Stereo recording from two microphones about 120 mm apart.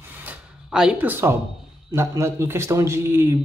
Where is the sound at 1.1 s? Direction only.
20° right (ahead or behind).